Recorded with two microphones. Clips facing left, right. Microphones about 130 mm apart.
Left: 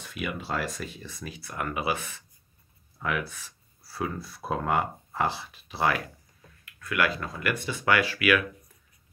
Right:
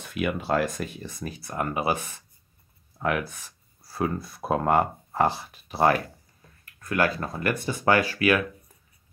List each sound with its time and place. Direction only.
0.1 s speech: 50° right (ahead or behind); by 8.5 s 35° right (ahead or behind)